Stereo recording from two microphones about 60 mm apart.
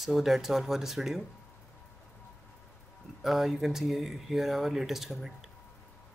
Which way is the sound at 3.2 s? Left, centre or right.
Centre.